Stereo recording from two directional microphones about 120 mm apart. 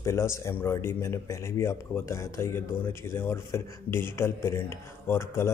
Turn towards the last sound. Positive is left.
turn(degrees=20)  # may be behind; listen again after turning